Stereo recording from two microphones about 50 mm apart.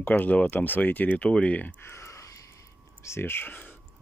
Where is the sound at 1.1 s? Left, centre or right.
Left.